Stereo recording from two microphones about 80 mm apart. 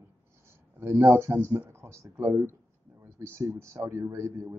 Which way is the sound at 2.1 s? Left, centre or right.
Right.